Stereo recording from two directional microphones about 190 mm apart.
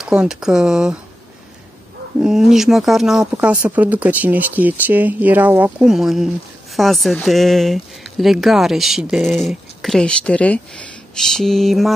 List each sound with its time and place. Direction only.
0.0 s speech: 5° right (ahead or behind)
2.1 s speech: 5° right (ahead or behind)